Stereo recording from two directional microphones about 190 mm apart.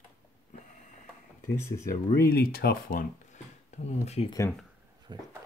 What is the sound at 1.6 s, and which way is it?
Speech, 15° left (ahead or behind).